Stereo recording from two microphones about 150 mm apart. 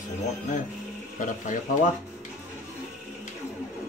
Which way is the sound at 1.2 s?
60° left (ahead or behind).